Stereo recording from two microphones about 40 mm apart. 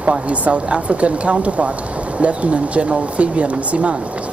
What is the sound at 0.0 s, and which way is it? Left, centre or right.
Speech, right.